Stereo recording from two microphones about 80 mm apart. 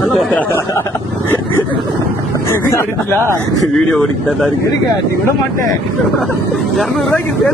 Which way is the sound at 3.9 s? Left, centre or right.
Centre.